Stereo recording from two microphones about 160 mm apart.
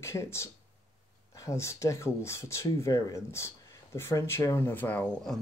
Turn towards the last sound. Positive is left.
turn(degrees=10)  # may be behind; listen again after turning